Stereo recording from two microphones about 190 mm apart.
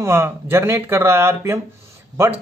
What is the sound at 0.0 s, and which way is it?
Speech, 15° right (ahead or behind).